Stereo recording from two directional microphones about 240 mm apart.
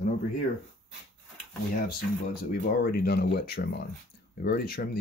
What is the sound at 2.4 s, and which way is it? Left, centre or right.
Speech, left.